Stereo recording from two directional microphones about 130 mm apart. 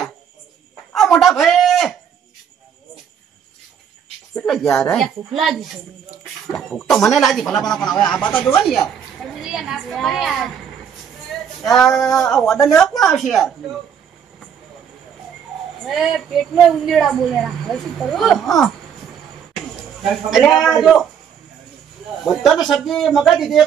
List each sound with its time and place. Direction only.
0.9 s a man's voice: centre (ahead or behind)
4.4 s a woman's voice: centre (ahead or behind)
8.2 s speech: 15° left (ahead or behind)
8.6 s a child's voice: centre (ahead or behind)
11.6 s a woman's voice: centre (ahead or behind)
15.8 s a woman's voice: centre (ahead or behind)
20.0 s a woman's voice: centre (ahead or behind)
22.2 s a woman's voice: centre (ahead or behind)